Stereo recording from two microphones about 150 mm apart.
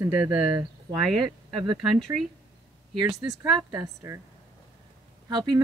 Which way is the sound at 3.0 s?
20° right (ahead or behind).